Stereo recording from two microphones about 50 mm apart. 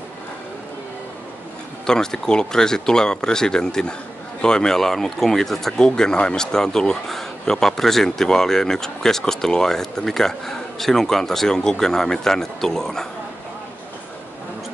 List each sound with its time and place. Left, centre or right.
1.9 s a man's voice: centre